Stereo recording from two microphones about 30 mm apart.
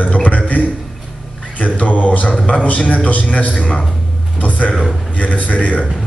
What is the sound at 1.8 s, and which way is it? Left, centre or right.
A man's voice, left.